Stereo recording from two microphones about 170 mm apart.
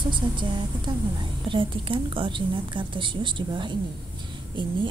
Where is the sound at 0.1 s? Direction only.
30° right (ahead or behind).